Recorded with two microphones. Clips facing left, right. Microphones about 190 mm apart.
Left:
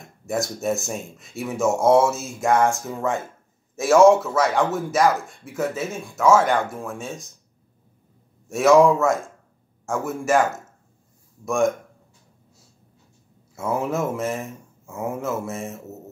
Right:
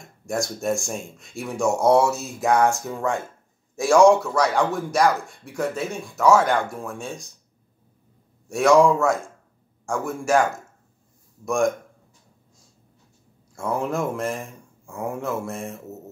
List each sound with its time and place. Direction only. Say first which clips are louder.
0.3 s speech: left 1 dB; centre (ahead or behind)
8.5 s speech: left 1 dB; centre (ahead or behind)
13.6 s speech: left 1 dB; 5° left (ahead or behind)